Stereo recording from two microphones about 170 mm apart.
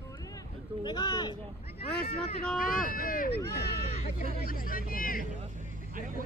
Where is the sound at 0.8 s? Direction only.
25° left (ahead or behind).